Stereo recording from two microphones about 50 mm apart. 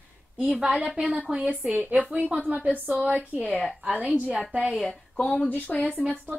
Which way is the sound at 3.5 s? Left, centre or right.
Left.